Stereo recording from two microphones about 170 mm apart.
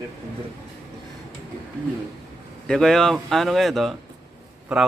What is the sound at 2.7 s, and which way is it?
Speech, 5° left (ahead or behind).